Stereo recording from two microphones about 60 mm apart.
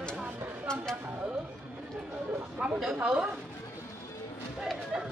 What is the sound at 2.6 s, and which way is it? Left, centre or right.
Speech, centre.